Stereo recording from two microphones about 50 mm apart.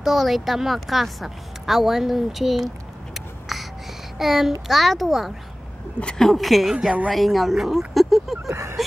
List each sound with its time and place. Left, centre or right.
0.0 s a woman's voice: centre
3.2 s a sound: centre
4.2 s a woman's voice: centre
5.9 s a woman's voice: centre
6.2 s a woman's voice: centre
8.5 s speech: right